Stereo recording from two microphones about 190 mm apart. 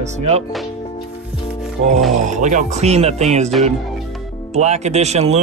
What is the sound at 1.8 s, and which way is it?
Speech, 35° right (ahead or behind).